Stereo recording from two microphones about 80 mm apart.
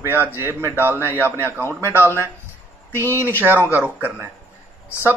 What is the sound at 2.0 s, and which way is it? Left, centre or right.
Speech, left.